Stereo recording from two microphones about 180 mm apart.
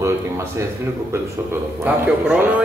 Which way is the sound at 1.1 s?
10° right (ahead or behind).